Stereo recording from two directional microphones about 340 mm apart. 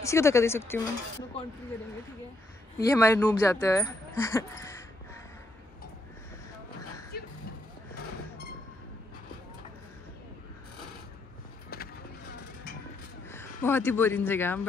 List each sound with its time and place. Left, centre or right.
0.0 s speech: centre
2.8 s speech: centre
7.1 s vehicle: left
13.3 s speech: centre